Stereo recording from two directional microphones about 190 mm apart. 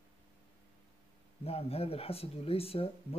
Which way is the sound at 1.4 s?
30° left (ahead or behind).